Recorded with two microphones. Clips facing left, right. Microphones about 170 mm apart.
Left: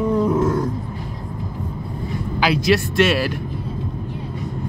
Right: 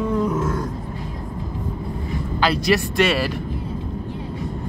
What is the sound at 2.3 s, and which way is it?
Speech, 5° left (ahead or behind).